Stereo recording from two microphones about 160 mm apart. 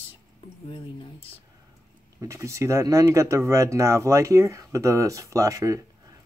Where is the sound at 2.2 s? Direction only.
20° right (ahead or behind).